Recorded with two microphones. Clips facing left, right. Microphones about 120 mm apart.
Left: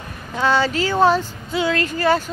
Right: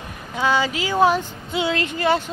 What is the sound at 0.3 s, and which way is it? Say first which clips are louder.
Speech: left 2 dB; 10° right (ahead or behind).